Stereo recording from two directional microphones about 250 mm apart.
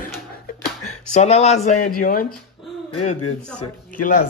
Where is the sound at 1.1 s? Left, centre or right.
Left.